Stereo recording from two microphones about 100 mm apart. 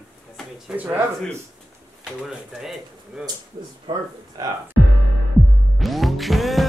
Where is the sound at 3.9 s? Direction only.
55° right (ahead or behind).